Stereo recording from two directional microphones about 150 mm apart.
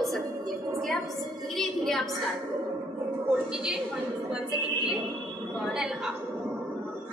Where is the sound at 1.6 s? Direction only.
Centre (ahead or behind).